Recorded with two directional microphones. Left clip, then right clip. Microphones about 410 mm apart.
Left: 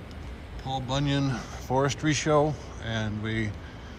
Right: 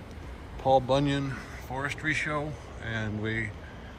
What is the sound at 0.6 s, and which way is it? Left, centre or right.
Speech, centre.